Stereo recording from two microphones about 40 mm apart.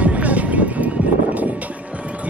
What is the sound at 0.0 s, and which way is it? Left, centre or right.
Music, right.